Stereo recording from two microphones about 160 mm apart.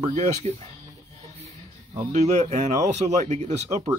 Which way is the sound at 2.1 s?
45° right (ahead or behind).